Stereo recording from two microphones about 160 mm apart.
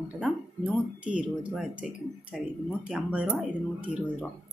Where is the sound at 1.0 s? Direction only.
5° right (ahead or behind).